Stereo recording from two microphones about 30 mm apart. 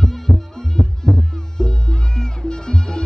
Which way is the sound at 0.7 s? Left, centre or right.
Left.